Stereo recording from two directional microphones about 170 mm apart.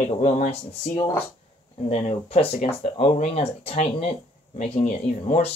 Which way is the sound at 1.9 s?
35° left (ahead or behind).